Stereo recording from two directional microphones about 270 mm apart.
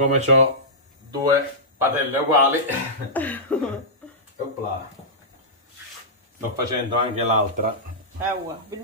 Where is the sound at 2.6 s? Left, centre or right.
Centre.